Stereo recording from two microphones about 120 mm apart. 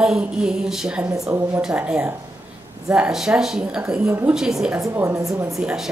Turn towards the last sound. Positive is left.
turn(degrees=-5)  # may be behind; listen again after turning